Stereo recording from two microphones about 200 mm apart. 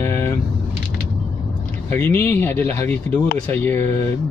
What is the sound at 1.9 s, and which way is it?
Speech, 10° left (ahead or behind).